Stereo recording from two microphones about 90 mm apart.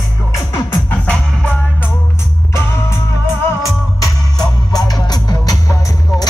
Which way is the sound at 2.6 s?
30° left (ahead or behind).